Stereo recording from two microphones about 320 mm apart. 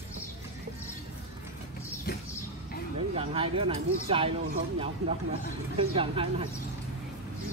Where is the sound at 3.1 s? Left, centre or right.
Centre.